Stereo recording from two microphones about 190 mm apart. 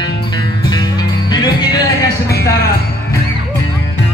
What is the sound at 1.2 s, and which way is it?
Music, 20° left (ahead or behind).